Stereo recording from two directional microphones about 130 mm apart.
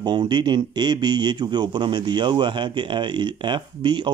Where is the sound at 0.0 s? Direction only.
35° right (ahead or behind).